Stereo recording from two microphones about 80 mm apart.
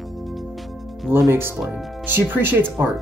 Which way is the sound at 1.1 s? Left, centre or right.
Right.